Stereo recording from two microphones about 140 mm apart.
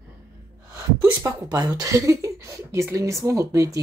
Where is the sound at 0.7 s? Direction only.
15° right (ahead or behind).